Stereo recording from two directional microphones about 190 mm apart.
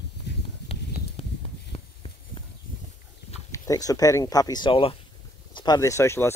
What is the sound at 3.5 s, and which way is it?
Speech, 20° left (ahead or behind).